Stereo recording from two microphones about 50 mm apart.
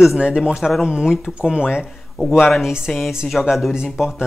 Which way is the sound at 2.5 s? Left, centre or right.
Centre.